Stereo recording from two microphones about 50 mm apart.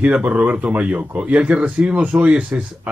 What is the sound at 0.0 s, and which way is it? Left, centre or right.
Speech, right.